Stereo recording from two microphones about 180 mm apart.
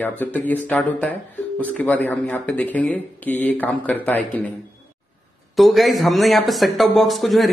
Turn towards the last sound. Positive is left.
turn(degrees=0)  # may be behind; listen again after turning